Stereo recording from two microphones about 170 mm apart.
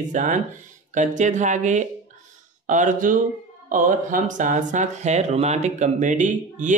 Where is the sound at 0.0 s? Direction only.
50° right (ahead or behind).